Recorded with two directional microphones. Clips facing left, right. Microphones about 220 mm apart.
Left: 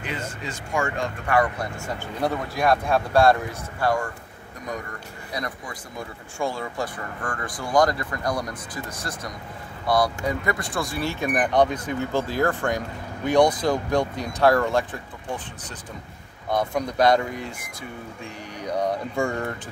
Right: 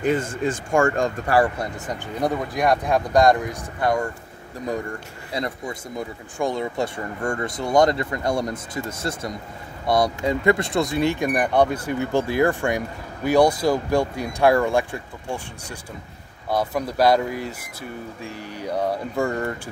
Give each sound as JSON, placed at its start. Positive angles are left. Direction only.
{"t": 0.0, "sound": "speech", "side_deg": -50}
{"t": 1.8, "sound": "speech", "side_deg": -15}
{"t": 5.3, "sound": "speech", "side_deg": -25}
{"t": 16.4, "sound": "speech", "side_deg": -5}